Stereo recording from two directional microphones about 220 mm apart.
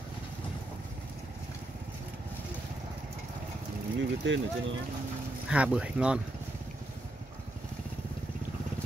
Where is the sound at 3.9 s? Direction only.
55° right (ahead or behind).